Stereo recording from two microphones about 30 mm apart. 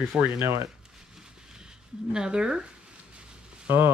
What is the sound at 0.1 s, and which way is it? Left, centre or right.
Speech, centre.